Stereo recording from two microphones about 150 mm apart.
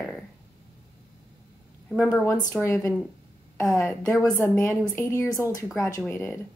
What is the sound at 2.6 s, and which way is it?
Speech, 20° left (ahead or behind).